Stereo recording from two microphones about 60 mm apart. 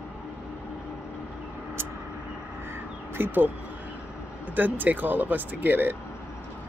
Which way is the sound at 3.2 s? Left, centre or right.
Right.